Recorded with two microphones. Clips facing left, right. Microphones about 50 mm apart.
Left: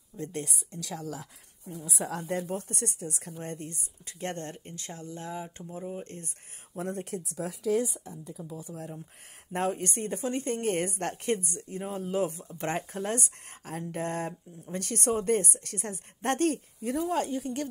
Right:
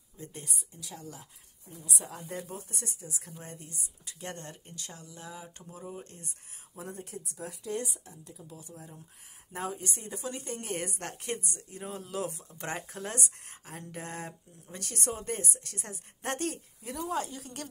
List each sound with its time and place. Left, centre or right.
0.2 s speech: left
2.0 s speech: left
2.3 s speech: left
5.7 s speech: centre
6.0 s speech: left
6.8 s speech: left
9.5 s speech: left